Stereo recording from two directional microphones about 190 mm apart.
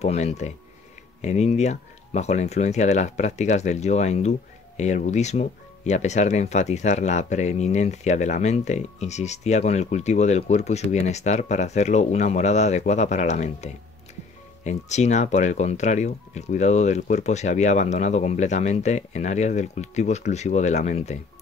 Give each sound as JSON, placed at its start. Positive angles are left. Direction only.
{"t": 0.0, "sound": "speech", "side_deg": 35}